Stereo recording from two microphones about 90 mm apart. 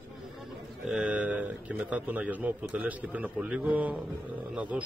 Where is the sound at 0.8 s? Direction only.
15° right (ahead or behind).